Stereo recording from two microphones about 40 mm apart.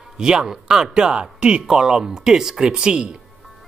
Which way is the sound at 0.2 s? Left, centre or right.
Centre.